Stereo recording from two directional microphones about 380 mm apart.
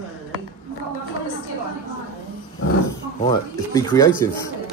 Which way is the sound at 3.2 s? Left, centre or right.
Centre.